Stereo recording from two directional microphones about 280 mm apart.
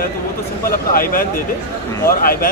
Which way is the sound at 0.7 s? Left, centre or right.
Left.